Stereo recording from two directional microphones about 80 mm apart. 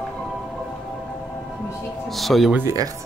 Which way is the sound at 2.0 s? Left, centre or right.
Centre.